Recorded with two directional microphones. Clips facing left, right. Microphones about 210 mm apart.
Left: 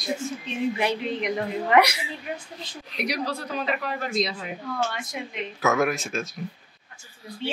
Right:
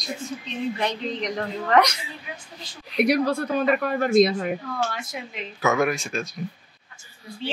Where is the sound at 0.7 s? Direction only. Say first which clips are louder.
Left 1 dB; 10° left (ahead or behind).